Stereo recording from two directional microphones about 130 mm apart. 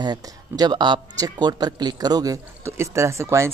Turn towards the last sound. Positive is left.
turn(degrees=-20)  # may be behind; listen again after turning